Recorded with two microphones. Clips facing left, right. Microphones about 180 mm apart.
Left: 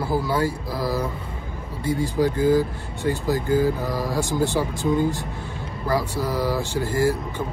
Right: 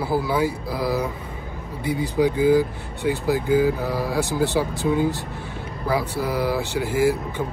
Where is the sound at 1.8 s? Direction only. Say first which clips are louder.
Left 1 dB; 45° left (ahead or behind).